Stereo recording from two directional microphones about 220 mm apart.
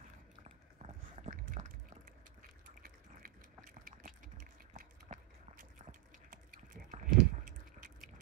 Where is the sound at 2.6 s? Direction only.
40° right (ahead or behind).